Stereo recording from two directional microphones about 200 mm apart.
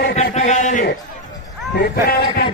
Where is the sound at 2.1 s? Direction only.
50° left (ahead or behind).